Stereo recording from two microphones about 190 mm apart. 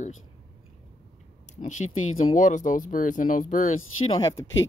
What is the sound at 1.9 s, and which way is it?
Speech, 90° left.